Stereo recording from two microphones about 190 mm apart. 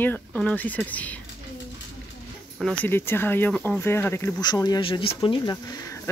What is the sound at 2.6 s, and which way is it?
Speech, 10° left (ahead or behind).